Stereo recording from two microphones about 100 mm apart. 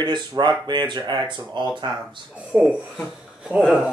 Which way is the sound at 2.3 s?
10° right (ahead or behind).